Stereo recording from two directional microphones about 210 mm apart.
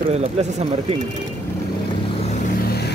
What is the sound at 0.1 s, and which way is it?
Speech, 30° right (ahead or behind).